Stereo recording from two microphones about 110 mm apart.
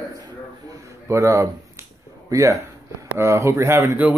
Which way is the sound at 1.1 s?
30° right (ahead or behind).